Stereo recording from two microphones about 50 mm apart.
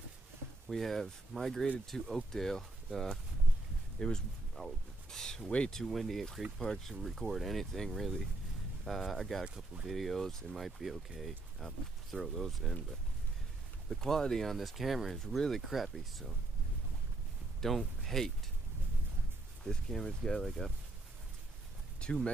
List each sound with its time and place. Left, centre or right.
0.7 s speech: centre
13.8 s speech: centre
17.6 s speech: centre
19.6 s speech: centre
22.0 s speech: centre